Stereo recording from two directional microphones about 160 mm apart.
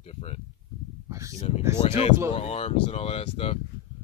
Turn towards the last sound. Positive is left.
turn(degrees=40)  # may be behind; listen again after turning